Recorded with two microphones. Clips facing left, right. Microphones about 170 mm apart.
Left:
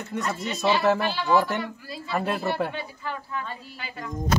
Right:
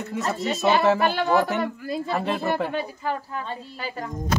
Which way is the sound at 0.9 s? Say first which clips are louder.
Right 2 dB; 55° right (ahead or behind).